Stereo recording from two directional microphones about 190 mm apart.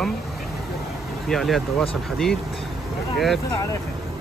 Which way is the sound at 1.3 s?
Centre (ahead or behind).